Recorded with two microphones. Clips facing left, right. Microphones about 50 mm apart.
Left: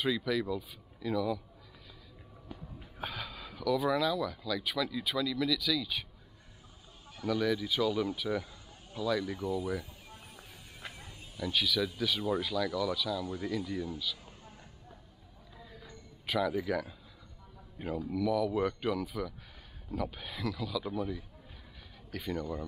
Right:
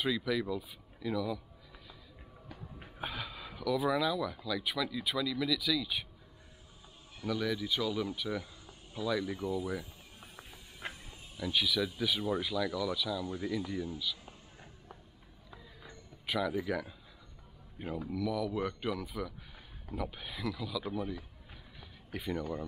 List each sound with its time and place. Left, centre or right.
0.0 s speech: centre
3.0 s speech: centre
7.2 s speech: centre
8.9 s speech: centre
10.8 s a sound: right
11.3 s speech: centre
16.3 s speech: centre
22.1 s speech: centre